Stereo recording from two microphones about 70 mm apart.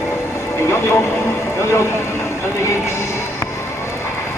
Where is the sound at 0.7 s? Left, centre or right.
Left.